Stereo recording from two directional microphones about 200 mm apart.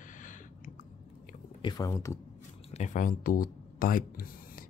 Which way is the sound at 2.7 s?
40° left (ahead or behind).